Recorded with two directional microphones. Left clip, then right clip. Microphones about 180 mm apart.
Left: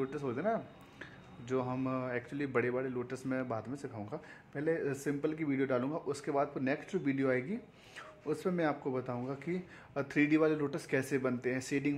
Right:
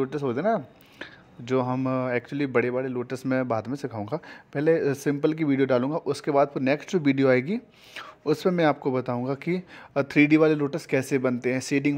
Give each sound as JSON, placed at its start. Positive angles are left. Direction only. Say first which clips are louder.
{"t": 0.0, "sound": "speech", "louder": "right 10 dB", "side_deg": -45}